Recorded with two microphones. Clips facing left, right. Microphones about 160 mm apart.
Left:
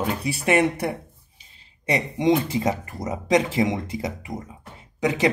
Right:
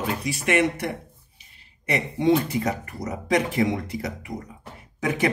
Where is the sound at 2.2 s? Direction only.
25° left (ahead or behind).